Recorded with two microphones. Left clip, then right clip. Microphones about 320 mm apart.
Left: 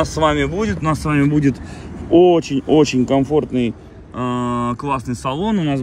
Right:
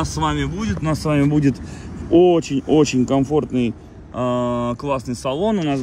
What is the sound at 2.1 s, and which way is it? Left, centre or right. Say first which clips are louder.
Speech: left 2 dB; centre.